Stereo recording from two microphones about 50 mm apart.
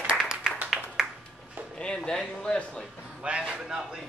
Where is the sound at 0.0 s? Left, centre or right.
Centre.